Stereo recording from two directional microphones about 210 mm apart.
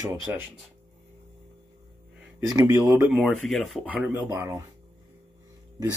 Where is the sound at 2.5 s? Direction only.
15° right (ahead or behind).